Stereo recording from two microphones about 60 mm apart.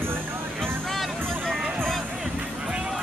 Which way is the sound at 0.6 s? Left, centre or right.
Centre.